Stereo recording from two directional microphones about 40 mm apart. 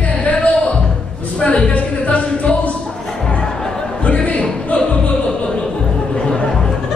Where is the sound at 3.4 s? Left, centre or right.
Centre.